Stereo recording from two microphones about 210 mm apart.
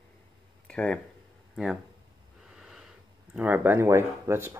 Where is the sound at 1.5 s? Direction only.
Centre (ahead or behind).